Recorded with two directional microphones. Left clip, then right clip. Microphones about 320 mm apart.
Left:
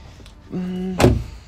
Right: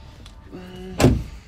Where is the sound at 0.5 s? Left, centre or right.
Centre.